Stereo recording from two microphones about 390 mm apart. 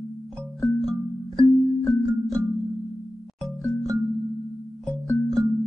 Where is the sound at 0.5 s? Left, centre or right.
Centre.